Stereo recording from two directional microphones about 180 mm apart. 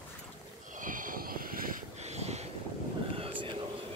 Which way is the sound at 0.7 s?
50° right (ahead or behind).